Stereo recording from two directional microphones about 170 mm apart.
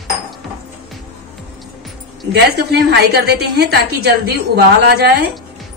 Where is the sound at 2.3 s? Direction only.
70° right (ahead or behind).